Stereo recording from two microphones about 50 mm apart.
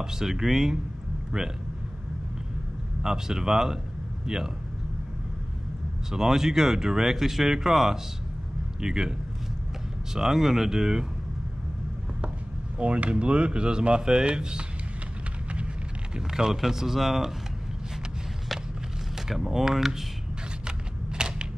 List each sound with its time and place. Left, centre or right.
0.0 s speech: centre
3.0 s speech: centre
6.1 s speech: centre
10.1 s speech: centre
12.7 s speech: right
16.3 s speech: centre
19.1 s speech: centre
20.6 s computer keyboard: centre